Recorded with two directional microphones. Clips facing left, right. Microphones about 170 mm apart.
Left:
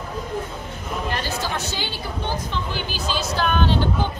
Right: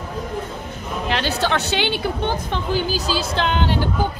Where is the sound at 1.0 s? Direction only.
75° right (ahead or behind).